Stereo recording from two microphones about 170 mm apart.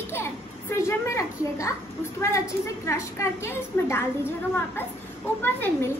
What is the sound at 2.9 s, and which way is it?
A woman's voice, 15° left (ahead or behind).